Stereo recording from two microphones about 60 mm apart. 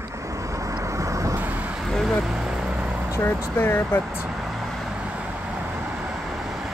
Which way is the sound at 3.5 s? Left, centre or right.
Left.